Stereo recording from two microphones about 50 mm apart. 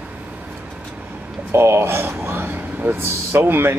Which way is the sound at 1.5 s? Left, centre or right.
Right.